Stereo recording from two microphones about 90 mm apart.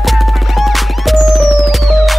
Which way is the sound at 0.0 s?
Centre (ahead or behind).